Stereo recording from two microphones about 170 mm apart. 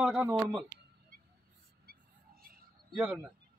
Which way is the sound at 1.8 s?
60° right (ahead or behind).